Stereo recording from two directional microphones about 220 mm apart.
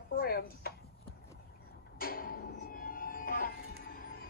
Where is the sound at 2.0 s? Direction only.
40° left (ahead or behind).